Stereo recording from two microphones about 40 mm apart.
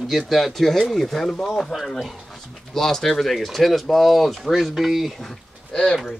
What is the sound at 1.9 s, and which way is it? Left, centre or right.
Speech, centre.